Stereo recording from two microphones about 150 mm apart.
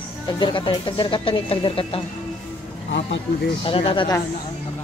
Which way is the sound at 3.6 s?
35° left (ahead or behind).